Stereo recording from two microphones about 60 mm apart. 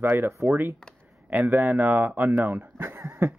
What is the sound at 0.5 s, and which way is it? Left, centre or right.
Speech, right.